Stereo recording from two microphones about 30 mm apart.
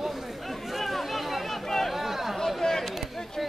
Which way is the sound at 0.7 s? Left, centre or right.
Centre.